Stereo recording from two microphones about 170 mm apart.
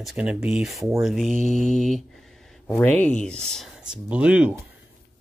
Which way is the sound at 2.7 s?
10° left (ahead or behind).